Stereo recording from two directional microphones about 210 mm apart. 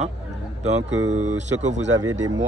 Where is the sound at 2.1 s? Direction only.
65° right (ahead or behind).